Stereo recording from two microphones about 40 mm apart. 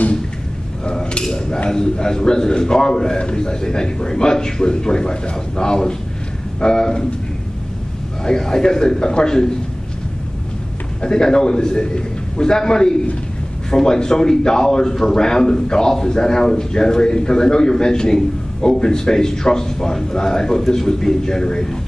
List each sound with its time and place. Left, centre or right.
1.3 s a man's voice: centre
8.2 s a man's voice: centre
11.0 s a man's voice: centre